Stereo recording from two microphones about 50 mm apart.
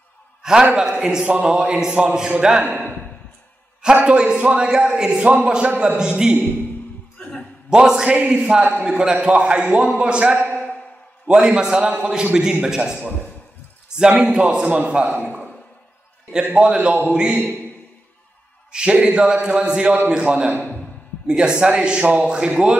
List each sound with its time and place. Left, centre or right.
0.4 s a sound: centre
0.7 s a man's voice: centre
3.9 s a man's voice: right
7.7 s a man's voice: centre
13.8 s a sound: centre
14.3 s speech: centre
16.5 s speech: right
17.3 s speech: right
18.7 s a man's voice: centre